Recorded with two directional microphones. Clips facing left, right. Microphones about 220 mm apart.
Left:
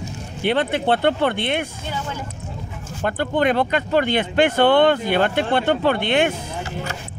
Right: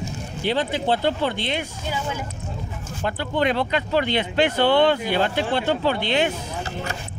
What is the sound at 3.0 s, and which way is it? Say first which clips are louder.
Speech: left 3 dB; 50° left (ahead or behind).